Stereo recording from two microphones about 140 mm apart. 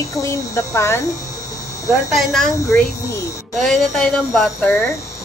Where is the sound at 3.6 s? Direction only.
Centre (ahead or behind).